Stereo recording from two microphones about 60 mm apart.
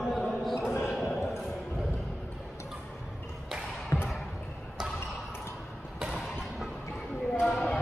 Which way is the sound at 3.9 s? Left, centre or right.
Left.